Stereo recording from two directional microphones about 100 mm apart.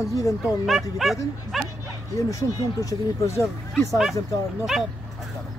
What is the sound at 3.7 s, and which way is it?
Speech, centre (ahead or behind).